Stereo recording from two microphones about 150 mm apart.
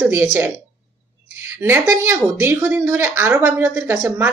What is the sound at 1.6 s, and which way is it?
Speech, 15° right (ahead or behind).